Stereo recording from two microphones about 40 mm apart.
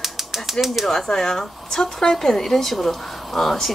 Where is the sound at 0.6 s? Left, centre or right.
Centre.